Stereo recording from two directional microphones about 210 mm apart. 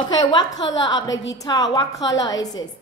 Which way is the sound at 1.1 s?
60° left (ahead or behind).